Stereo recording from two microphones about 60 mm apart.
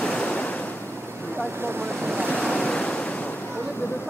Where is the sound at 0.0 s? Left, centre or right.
Centre.